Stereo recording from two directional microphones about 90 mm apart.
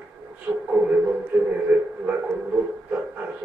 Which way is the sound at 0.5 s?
20° right (ahead or behind).